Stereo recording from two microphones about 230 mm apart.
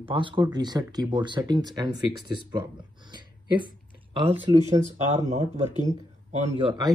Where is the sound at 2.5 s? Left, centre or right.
Centre.